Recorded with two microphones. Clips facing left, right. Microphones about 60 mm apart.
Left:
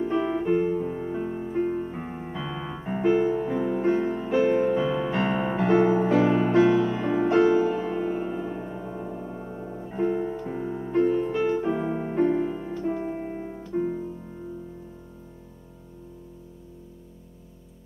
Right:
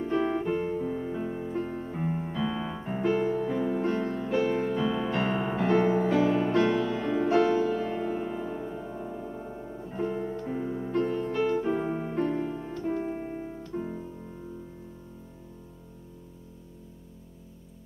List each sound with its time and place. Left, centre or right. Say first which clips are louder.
0.0 s music: left 2 dB; centre
1.0 s piano: left 3 dB; centre
3.3 s music: left 2 dB; centre
9.0 s gong: left 2 dB; centre
9.3 s music: left 3 dB; centre
9.8 s music: left 5 dB; centre
11.4 s piano: left 2 dB; centre
12.0 s music: left 5 dB; centre
12.6 s piano: left 2 dB; centre